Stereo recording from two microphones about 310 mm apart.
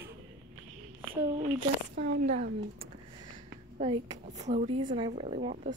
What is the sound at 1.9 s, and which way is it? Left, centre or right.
Speech, right.